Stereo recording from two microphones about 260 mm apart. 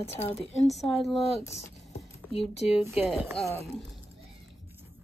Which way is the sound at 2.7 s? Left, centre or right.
Centre.